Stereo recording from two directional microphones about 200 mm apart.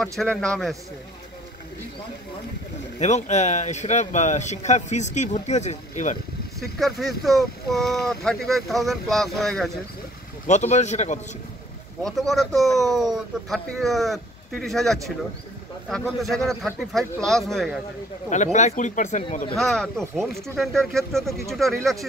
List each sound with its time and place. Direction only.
0.0 s speech: centre (ahead or behind)
3.0 s speech: 35° left (ahead or behind)
6.8 s speech: centre (ahead or behind)
10.4 s speech: 35° left (ahead or behind)
12.0 s speech: centre (ahead or behind)
18.3 s speech: 35° left (ahead or behind)
19.5 s speech: centre (ahead or behind)